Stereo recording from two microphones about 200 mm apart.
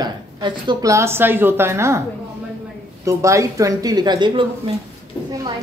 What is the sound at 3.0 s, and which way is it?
Speech, 15° right (ahead or behind).